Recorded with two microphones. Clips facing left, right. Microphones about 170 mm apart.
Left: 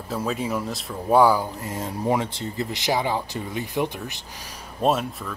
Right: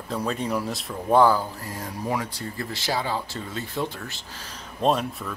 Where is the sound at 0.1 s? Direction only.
5° left (ahead or behind).